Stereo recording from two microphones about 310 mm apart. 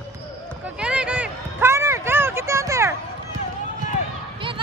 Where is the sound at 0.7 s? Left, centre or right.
Centre.